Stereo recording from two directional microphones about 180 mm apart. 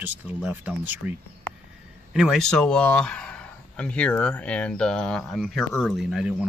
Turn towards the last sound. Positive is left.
turn(degrees=-5)  # may be behind; listen again after turning